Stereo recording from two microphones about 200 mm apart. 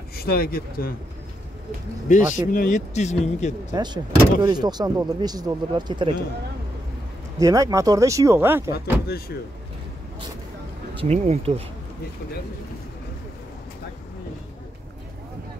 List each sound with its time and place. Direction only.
0.1 s speech: 50° left (ahead or behind)
2.0 s speech: 40° left (ahead or behind)
3.7 s speech: 20° right (ahead or behind)
7.3 s speech: 15° right (ahead or behind)
11.0 s speech: 35° right (ahead or behind)